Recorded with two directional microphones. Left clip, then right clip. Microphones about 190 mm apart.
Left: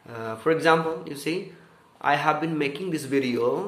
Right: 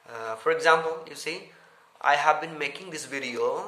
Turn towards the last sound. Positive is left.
turn(degrees=-5)  # may be behind; listen again after turning